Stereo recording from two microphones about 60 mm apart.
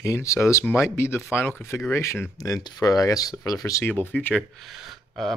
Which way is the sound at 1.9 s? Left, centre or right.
Left.